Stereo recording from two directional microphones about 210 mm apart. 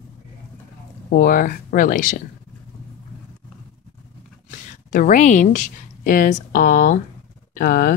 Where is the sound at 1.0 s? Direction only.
45° left (ahead or behind).